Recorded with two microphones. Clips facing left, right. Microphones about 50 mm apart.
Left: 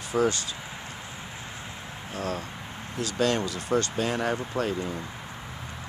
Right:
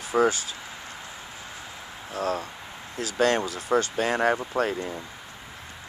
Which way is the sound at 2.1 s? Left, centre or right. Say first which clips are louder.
Right 4 dB; right.